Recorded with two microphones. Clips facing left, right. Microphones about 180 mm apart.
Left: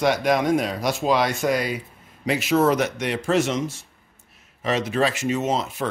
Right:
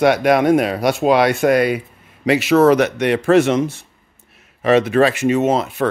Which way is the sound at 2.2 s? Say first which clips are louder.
Right 7 dB; 75° right (ahead or behind).